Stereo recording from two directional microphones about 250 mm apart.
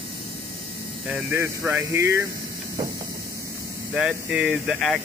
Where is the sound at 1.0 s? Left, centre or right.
Centre.